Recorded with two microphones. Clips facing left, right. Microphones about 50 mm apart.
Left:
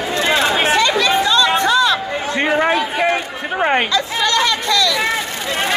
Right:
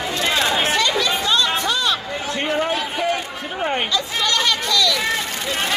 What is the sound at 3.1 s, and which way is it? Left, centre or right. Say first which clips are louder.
Run: left 4 dB; left.